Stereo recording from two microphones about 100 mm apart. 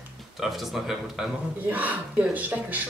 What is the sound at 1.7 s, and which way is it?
A woman's voice, 15° right (ahead or behind).